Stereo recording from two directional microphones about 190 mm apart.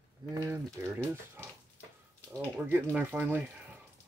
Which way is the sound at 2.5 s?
10° right (ahead or behind).